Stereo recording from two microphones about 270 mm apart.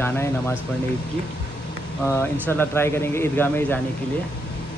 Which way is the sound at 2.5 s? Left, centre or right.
Centre.